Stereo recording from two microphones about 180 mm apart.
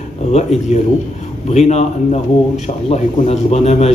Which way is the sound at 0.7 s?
40° left (ahead or behind).